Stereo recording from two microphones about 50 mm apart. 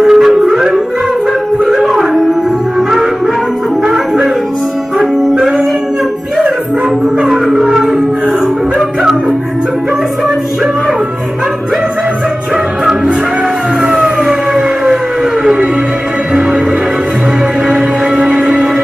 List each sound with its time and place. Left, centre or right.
0.0 s music: centre
3.8 s music: centre
7.2 s music: centre
17.6 s music: centre